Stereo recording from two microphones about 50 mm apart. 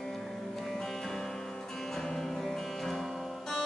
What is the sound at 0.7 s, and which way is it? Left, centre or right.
Music, centre.